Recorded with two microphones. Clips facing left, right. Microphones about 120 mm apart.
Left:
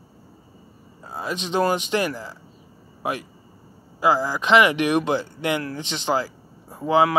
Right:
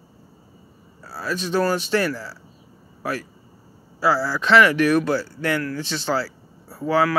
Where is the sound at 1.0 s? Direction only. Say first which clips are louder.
Right 2 dB; 20° left (ahead or behind).